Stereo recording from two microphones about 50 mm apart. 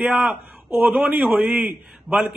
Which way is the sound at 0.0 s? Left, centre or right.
Right.